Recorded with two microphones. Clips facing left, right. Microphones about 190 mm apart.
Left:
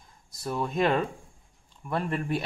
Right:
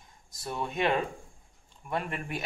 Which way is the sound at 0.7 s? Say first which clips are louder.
Left 3 dB; 35° left (ahead or behind).